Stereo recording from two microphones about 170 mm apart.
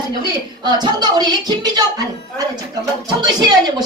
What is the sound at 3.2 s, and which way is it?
Speech, 25° right (ahead or behind).